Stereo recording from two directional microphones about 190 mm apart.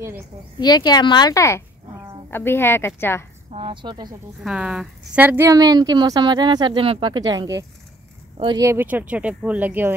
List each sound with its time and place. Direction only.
0.6 s speech: 20° left (ahead or behind)
3.5 s speech: 25° right (ahead or behind)
4.4 s speech: 5° right (ahead or behind); by 8.6 s 25° right (ahead or behind)
8.6 s speech: 10° right (ahead or behind)